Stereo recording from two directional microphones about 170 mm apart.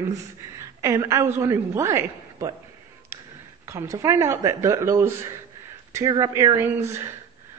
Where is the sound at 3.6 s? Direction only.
20° right (ahead or behind).